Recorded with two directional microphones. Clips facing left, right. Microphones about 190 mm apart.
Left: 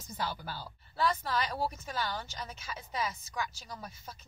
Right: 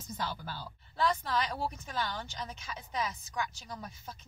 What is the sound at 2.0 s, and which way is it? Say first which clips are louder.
Speech: even; 35° left (ahead or behind).